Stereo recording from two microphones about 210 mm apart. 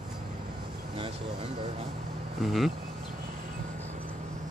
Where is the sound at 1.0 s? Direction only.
30° right (ahead or behind).